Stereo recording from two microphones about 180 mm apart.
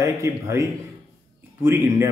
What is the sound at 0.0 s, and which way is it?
Speech, 15° right (ahead or behind).